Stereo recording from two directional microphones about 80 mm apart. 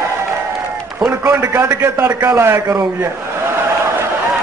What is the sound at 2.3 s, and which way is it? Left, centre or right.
Speech, right.